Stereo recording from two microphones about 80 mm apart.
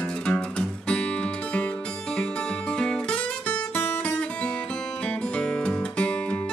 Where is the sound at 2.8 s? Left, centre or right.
Centre.